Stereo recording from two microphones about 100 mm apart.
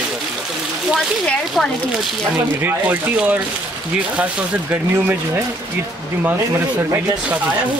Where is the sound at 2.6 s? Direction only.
20° right (ahead or behind).